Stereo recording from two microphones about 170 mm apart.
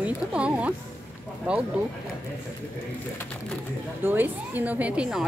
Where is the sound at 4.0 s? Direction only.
10° right (ahead or behind).